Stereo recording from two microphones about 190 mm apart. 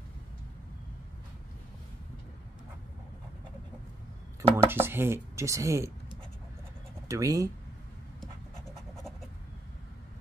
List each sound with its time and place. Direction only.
4.4 s speech: 10° right (ahead or behind)